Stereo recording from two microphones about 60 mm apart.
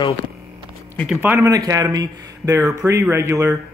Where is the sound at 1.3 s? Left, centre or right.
Right.